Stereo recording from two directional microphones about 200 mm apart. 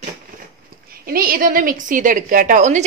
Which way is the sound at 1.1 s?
45° right (ahead or behind).